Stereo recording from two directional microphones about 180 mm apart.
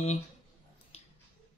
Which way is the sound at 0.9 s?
35° left (ahead or behind).